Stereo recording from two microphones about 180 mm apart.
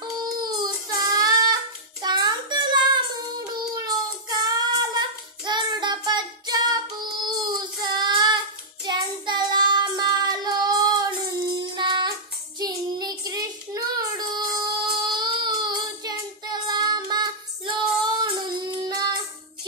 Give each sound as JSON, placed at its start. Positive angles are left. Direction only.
{"t": 0.0, "sound": "child singing", "side_deg": -20}